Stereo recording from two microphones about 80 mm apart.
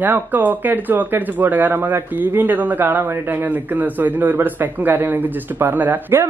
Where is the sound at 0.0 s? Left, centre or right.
Right.